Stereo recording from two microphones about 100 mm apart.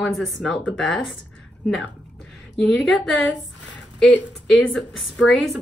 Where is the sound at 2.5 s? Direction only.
Centre (ahead or behind).